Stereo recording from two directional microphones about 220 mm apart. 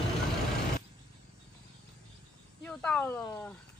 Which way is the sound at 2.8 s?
5° left (ahead or behind).